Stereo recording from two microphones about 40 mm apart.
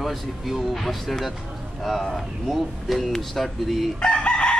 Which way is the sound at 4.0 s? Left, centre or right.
Left.